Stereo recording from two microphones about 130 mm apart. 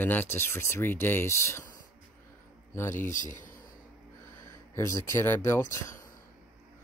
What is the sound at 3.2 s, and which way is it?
Speech, 90° left.